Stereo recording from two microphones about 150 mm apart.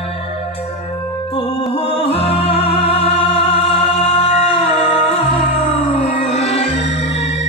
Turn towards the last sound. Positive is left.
turn(degrees=45)  # may be behind; listen again after turning